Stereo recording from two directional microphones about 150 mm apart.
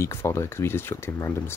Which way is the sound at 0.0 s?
15° left (ahead or behind).